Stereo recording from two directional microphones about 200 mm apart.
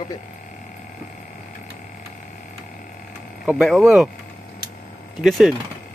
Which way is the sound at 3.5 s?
Centre (ahead or behind).